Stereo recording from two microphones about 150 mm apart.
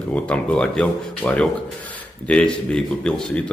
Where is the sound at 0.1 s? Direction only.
10° left (ahead or behind).